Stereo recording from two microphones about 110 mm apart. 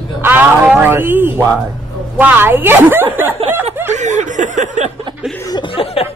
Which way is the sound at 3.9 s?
90° right.